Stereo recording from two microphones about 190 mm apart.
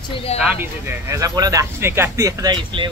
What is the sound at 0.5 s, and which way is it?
Speech, 15° right (ahead or behind).